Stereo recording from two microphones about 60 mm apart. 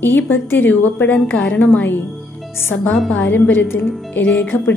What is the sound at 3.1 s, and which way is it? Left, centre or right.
A woman's voice, left.